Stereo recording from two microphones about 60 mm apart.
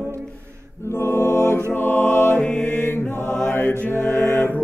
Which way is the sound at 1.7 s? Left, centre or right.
Left.